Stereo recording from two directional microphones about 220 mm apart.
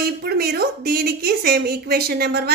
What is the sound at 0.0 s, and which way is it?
A woman's voice, 45° right (ahead or behind).